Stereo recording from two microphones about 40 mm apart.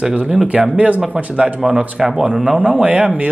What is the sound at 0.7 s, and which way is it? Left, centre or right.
Speech, right.